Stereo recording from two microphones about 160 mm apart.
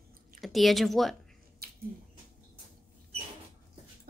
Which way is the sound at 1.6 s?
75° right (ahead or behind).